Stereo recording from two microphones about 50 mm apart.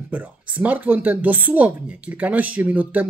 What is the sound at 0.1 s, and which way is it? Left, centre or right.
Speech, right.